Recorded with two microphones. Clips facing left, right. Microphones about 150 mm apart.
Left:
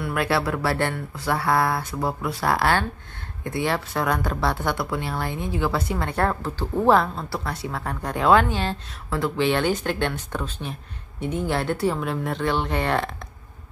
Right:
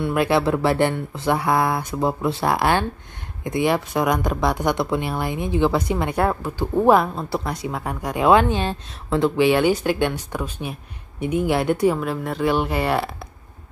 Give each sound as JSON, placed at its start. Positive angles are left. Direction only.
{"t": 0.0, "sound": "speech", "side_deg": -20}
{"t": 12.0, "sound": "speech", "side_deg": 0}